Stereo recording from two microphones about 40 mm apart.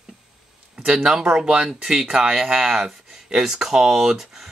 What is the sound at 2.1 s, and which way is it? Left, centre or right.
Speech, centre.